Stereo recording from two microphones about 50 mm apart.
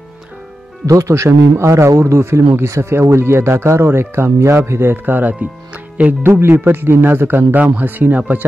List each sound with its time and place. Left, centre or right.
1.0 s a man's voice: right
4.9 s speech: right
6.2 s speech: right